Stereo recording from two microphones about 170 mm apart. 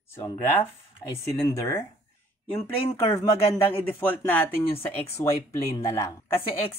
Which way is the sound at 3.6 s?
15° left (ahead or behind).